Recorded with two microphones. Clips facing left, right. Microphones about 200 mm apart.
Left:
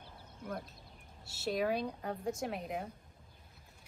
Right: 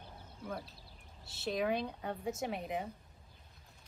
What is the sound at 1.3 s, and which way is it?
Speech, centre (ahead or behind).